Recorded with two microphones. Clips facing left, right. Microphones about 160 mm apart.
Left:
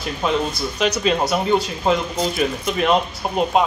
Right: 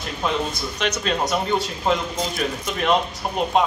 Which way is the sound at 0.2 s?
5° left (ahead or behind).